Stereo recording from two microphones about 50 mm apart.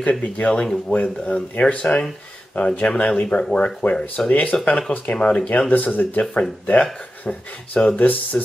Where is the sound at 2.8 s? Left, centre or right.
Centre.